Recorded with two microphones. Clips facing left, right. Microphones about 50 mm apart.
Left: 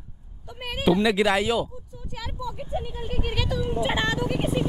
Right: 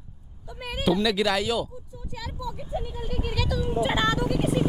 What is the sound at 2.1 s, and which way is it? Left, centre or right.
Speech, left.